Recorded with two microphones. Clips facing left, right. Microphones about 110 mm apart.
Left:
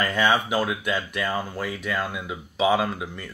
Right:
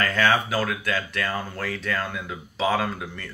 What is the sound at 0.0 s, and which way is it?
Speech, 15° left (ahead or behind).